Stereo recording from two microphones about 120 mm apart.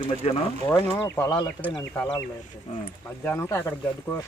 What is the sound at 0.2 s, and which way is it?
Speech, 65° left (ahead or behind).